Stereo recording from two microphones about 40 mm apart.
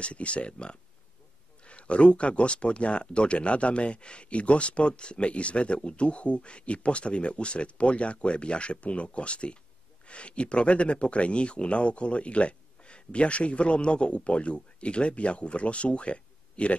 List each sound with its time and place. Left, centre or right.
0.0 s speech: left